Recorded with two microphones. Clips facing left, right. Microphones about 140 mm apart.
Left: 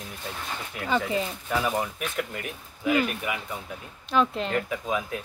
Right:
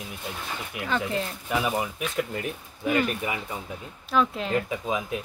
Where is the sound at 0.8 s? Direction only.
5° left (ahead or behind).